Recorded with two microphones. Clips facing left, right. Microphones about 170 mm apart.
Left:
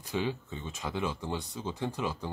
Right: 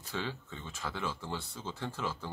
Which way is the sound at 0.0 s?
15° left (ahead or behind).